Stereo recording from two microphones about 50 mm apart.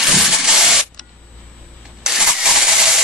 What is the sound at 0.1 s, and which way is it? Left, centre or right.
Spray, centre.